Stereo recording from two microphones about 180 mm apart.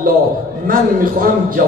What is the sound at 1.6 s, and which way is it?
Speech, 50° right (ahead or behind).